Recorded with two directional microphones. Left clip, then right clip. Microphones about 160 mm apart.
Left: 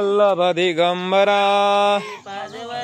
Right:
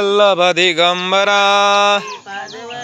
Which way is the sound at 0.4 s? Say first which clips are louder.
Right 5 dB; centre (ahead or behind).